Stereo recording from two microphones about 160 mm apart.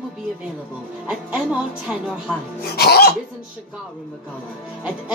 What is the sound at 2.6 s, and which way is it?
Cough, 80° left.